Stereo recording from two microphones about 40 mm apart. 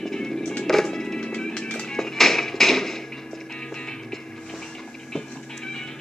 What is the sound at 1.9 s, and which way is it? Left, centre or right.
Music, centre.